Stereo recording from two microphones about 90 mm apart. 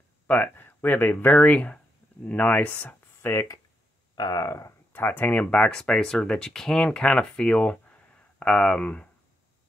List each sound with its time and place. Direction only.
0.3 s speech: 25° left (ahead or behind)
4.1 s speech: 45° left (ahead or behind)
4.9 s speech: 20° left (ahead or behind)